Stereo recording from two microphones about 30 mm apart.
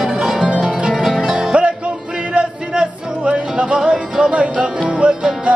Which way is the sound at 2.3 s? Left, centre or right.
Right.